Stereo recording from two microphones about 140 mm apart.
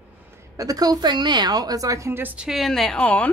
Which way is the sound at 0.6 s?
25° right (ahead or behind).